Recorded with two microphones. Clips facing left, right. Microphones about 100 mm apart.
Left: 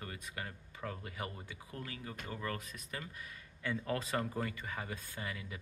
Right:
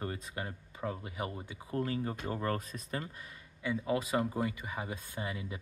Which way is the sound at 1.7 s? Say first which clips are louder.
Right 12 dB; 35° right (ahead or behind).